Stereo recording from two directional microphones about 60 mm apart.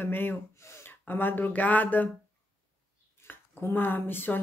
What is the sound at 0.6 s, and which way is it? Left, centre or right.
Gasp, left.